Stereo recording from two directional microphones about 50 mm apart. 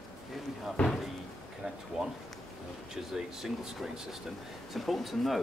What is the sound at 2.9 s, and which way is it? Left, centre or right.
Speech, centre.